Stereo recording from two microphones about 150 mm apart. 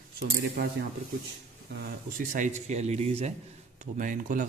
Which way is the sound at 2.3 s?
55° right (ahead or behind).